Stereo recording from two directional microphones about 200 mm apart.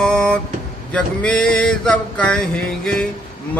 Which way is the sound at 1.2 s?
5° left (ahead or behind).